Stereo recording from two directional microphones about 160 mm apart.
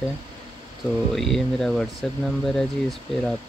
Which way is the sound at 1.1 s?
Centre (ahead or behind).